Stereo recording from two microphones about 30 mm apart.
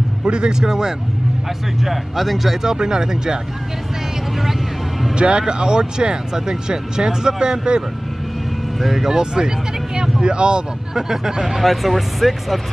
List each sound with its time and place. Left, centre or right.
0.2 s speech: right
1.8 s speech: centre
2.6 s speech: right
5.1 s speech: right
8.8 s speech: centre
9.1 s speech: right
11.0 s speech: centre
11.6 s speech: centre